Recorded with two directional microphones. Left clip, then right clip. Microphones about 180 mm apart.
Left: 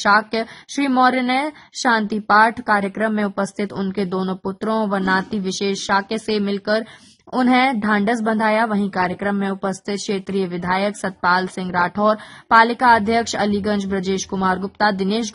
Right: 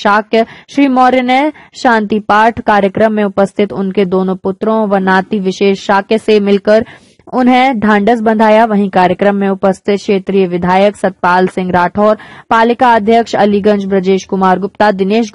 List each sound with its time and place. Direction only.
0.0 s speech: 35° right (ahead or behind)